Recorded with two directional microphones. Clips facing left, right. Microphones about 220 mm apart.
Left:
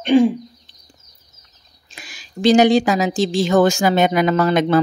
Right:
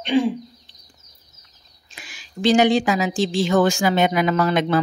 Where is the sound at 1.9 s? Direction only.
40° left (ahead or behind).